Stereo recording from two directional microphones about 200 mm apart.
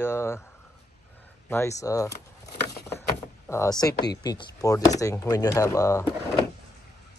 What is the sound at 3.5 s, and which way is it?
Speech, 15° left (ahead or behind).